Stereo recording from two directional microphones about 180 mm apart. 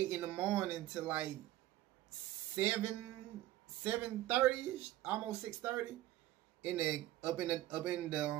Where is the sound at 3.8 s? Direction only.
10° right (ahead or behind).